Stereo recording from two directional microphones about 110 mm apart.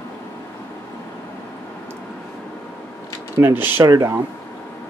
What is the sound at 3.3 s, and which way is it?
Speech, 20° right (ahead or behind).